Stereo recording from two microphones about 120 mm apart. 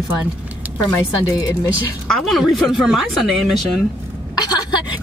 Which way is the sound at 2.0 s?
Centre (ahead or behind).